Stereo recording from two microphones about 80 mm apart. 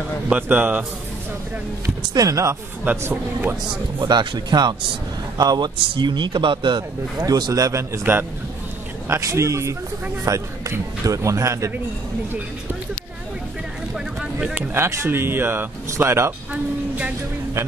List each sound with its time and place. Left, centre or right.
0.3 s speech: right
2.1 s a man's voice: right
3.0 s speech: right
4.0 s speech: right
5.8 s speech: right
7.2 s a man's voice: right
9.2 s a man's voice: right
14.5 s speech: right